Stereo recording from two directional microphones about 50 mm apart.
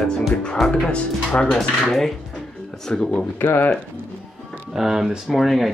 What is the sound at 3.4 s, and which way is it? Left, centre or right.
Speech, left.